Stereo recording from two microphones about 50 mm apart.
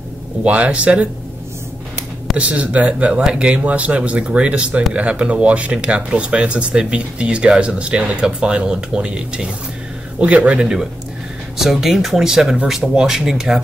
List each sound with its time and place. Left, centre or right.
0.4 s speech: right
2.3 s speech: right
11.5 s speech: centre